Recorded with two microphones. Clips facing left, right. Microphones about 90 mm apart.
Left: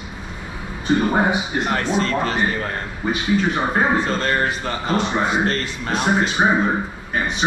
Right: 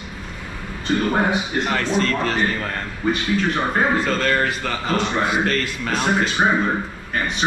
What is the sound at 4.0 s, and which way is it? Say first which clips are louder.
Speech: even; 30° left (ahead or behind).